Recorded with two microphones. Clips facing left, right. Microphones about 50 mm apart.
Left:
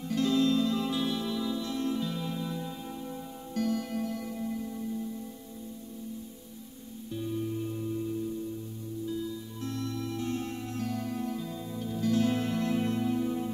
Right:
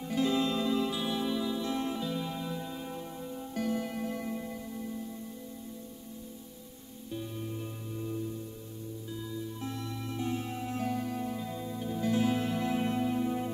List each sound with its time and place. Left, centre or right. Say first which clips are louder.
0.1 s music: left 3 dB; centre
0.7 s music: left 1 dB; centre; by 2.0 s right
2.0 s music: left 1 dB; centre; by 4.5 s right
7.1 s music: left 5 dB; centre
9.2 s music: left 1 dB; centre
12.3 s music: left 1 dB; centre